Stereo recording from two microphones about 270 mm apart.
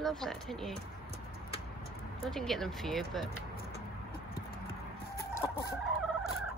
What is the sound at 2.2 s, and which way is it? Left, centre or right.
Speech, centre.